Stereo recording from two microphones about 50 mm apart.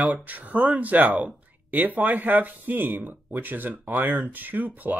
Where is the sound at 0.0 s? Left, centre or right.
Right.